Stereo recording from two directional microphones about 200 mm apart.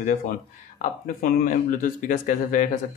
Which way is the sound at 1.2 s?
40° left (ahead or behind).